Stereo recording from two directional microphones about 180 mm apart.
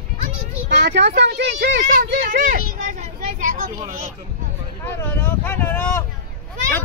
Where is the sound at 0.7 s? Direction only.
75° right (ahead or behind).